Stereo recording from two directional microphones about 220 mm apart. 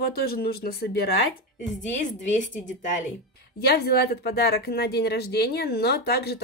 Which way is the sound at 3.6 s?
45° left (ahead or behind).